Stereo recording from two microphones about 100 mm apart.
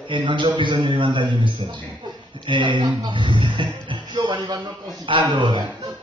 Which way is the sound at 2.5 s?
55° right (ahead or behind).